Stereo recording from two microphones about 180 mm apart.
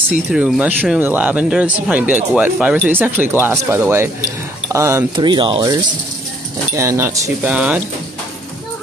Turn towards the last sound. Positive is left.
turn(degrees=-5)  # may be behind; listen again after turning